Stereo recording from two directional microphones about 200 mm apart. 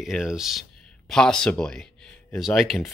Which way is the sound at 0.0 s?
Centre (ahead or behind).